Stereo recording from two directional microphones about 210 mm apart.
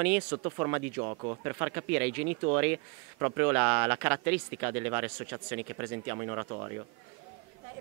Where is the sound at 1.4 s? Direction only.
15° right (ahead or behind).